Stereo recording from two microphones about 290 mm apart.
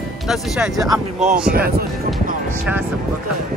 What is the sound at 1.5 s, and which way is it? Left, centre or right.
Speech, right.